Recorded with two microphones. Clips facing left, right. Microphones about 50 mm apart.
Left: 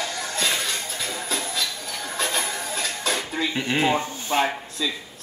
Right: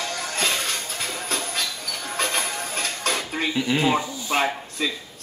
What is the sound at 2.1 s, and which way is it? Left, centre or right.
Music, right.